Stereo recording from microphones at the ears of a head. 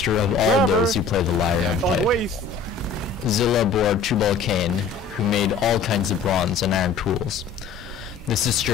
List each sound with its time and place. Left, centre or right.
0.0 s speech: left
1.8 s speech: right
3.3 s speech: left